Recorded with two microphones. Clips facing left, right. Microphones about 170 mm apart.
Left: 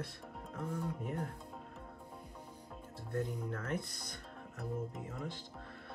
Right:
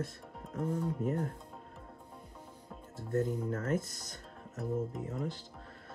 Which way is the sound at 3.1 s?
40° right (ahead or behind).